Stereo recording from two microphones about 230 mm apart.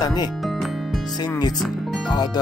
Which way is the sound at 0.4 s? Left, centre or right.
Centre.